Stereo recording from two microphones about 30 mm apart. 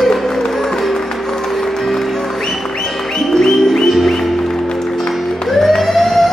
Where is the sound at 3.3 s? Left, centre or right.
Centre.